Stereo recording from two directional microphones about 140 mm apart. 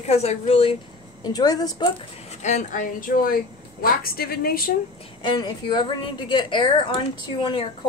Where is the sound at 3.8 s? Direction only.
90° left.